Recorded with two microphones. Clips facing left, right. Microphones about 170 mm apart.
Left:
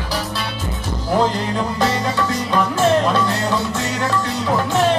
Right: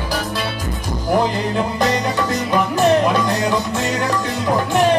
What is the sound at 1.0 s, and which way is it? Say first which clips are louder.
Music: right 1 dB; 15° right (ahead or behind).